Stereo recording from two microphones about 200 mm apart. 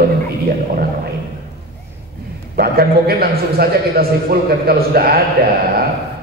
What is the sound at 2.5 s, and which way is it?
A man's voice, 50° right (ahead or behind).